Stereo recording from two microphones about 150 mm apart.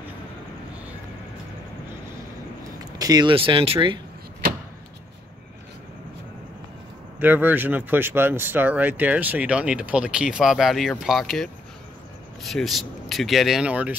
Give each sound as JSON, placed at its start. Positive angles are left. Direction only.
{"t": 3.0, "sound": "speech", "side_deg": -25}
{"t": 7.2, "sound": "speech", "side_deg": -10}